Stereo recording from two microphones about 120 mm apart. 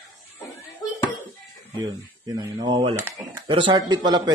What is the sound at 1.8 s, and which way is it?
A man's voice, 35° right (ahead or behind).